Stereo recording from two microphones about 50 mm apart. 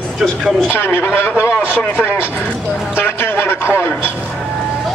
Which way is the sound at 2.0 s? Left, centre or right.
Left.